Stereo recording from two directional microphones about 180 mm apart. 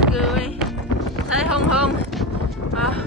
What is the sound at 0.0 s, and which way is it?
Music, centre (ahead or behind).